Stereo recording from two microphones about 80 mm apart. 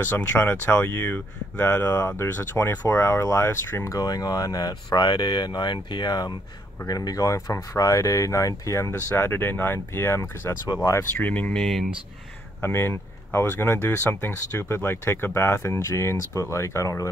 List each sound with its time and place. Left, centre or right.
0.0 s speech: left
4.0 s speech: left
6.9 s speech: left
9.1 s speech: left
11.1 s speech: centre
11.6 s speech: centre
12.6 s speech: left